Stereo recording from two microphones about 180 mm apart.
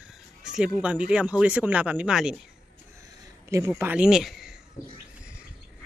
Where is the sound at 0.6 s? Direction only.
5° right (ahead or behind).